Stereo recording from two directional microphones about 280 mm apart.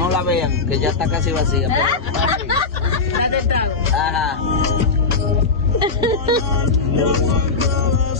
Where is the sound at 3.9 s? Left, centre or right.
Centre.